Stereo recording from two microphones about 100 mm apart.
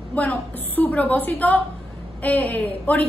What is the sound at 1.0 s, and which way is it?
A woman's voice, 15° left (ahead or behind).